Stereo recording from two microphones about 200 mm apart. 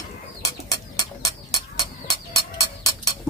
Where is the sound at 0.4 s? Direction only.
15° left (ahead or behind).